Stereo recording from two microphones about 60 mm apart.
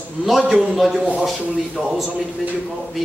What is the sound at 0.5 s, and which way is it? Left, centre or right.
A man's voice, centre.